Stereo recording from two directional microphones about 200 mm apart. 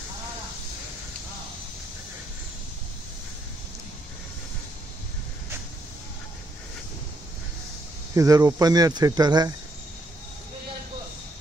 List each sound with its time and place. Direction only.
8.1 s speech: 15° right (ahead or behind)